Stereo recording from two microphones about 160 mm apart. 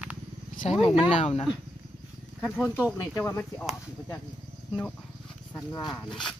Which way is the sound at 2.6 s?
15° left (ahead or behind).